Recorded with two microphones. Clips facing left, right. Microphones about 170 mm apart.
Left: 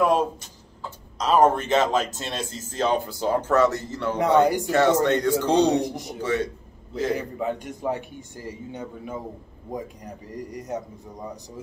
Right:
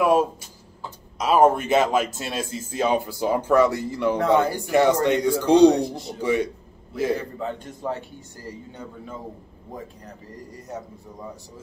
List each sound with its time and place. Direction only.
0.0 s speech: 10° right (ahead or behind)
4.4 s a man's voice: 15° left (ahead or behind)
4.6 s speech: 10° right (ahead or behind)
5.7 s a man's voice: 15° left (ahead or behind)
6.2 s speech: 10° right (ahead or behind)
7.2 s a man's voice: 15° left (ahead or behind)